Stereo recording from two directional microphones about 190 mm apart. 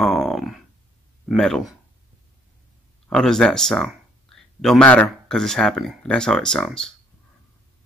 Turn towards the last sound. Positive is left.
turn(degrees=5)  # may be behind; listen again after turning